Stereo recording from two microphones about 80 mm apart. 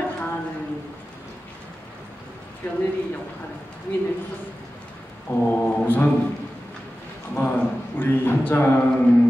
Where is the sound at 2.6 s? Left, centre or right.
Left.